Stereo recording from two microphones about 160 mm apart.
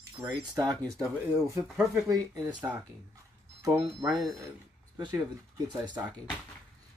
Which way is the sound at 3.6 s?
20° right (ahead or behind).